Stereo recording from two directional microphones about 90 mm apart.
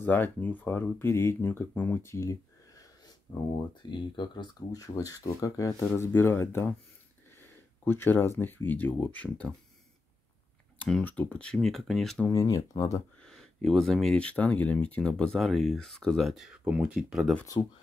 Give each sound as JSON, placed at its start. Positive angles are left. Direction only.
{"t": 0.0, "sound": "speech", "side_deg": 20}
{"t": 2.1, "sound": "speech", "side_deg": 40}
{"t": 4.7, "sound": "speech", "side_deg": 40}
{"t": 5.9, "sound": "speech", "side_deg": 30}
{"t": 11.1, "sound": "speech", "side_deg": 15}
{"t": 11.5, "sound": "speech", "side_deg": 0}
{"t": 12.3, "sound": "speech", "side_deg": 45}
{"t": 13.2, "sound": "speech", "side_deg": 5}
{"t": 16.6, "sound": "speech", "side_deg": -15}
{"t": 17.6, "sound": "speech", "side_deg": 55}